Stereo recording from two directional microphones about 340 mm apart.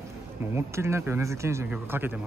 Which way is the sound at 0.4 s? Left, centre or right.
Centre.